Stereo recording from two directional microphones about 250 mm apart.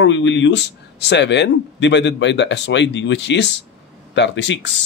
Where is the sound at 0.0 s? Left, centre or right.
Left.